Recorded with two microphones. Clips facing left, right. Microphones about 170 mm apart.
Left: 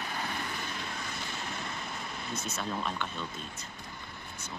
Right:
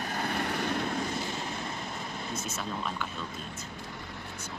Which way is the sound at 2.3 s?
5° right (ahead or behind).